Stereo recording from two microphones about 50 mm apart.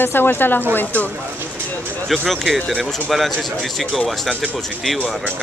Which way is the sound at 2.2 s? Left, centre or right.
Centre.